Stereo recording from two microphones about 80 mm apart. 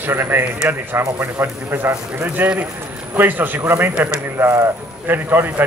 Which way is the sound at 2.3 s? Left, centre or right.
Right.